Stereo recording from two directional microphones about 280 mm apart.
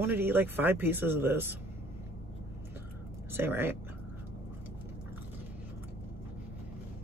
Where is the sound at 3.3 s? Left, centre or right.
Centre.